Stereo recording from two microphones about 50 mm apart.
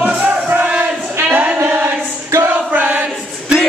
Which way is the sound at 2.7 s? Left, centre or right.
Right.